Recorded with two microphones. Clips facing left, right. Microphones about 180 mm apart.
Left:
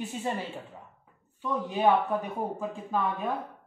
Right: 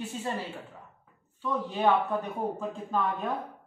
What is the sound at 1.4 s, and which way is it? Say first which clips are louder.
Speech: left 1 dB; 15° left (ahead or behind).